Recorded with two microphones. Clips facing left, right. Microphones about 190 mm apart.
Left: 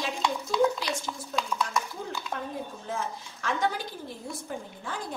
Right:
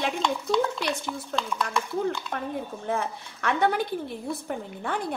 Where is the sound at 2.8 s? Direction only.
60° right (ahead or behind).